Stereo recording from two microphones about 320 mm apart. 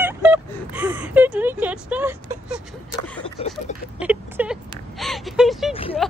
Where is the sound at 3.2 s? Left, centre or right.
Centre.